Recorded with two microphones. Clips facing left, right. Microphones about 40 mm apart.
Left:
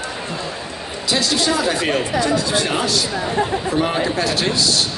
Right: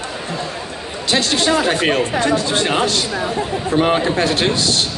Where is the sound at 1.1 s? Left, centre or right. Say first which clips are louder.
Right 3 dB; right.